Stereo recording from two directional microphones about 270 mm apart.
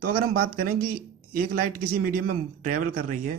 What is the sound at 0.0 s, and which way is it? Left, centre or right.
Speech, right.